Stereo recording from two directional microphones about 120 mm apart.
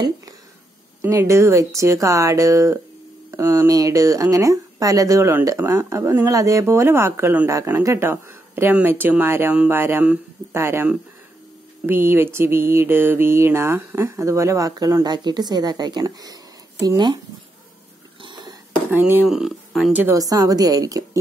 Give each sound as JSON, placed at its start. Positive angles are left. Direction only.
{"t": 1.1, "sound": "speech", "side_deg": -25}
{"t": 18.2, "sound": "a sound", "side_deg": -40}
{"t": 18.9, "sound": "speech", "side_deg": -15}
{"t": 19.2, "sound": "speech", "side_deg": -5}
{"t": 19.9, "sound": "speech", "side_deg": -15}
{"t": 20.2, "sound": "speech", "side_deg": -30}